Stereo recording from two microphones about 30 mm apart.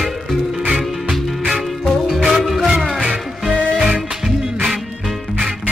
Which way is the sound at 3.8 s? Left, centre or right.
Centre.